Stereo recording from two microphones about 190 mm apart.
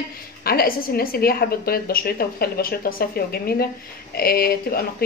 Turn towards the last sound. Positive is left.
turn(degrees=55)  # may be behind; listen again after turning